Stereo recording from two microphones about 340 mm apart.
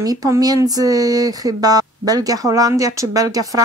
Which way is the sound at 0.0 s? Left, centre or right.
Centre.